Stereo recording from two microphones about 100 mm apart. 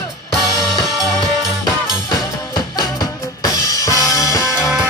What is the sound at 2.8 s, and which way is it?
Music, 45° left (ahead or behind).